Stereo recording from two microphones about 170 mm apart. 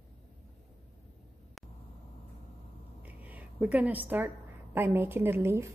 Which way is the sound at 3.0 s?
10° right (ahead or behind).